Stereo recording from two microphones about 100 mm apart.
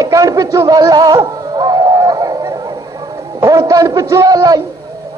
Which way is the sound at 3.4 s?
35° right (ahead or behind).